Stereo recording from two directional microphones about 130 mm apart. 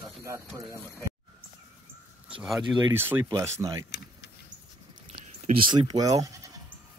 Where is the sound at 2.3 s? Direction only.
5° right (ahead or behind).